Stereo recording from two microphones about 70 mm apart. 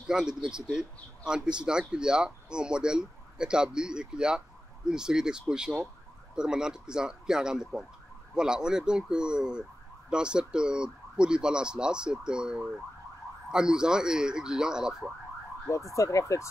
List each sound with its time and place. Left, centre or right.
0.1 s speech: centre
15.7 s speech: left